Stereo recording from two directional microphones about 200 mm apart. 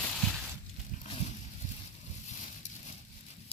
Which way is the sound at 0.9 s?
40° left (ahead or behind).